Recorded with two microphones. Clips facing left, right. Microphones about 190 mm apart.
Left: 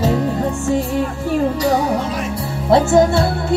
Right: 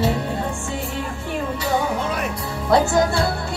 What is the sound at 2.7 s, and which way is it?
Music, 25° left (ahead or behind).